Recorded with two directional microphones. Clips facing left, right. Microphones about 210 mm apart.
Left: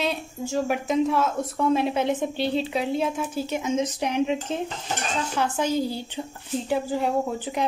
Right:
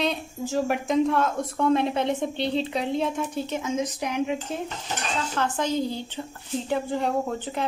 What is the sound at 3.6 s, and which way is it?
Speech, 25° left (ahead or behind).